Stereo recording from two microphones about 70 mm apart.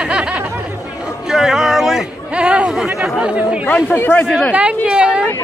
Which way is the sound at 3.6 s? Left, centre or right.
Left.